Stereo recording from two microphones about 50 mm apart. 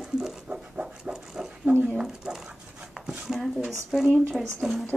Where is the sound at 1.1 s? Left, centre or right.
Centre.